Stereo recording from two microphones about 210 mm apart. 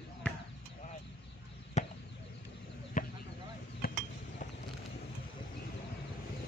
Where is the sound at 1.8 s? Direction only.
35° left (ahead or behind).